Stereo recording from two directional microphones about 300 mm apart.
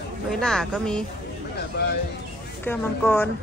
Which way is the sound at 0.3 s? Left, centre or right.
Centre.